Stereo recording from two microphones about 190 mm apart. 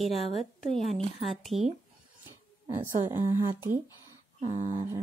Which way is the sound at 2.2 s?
15° right (ahead or behind).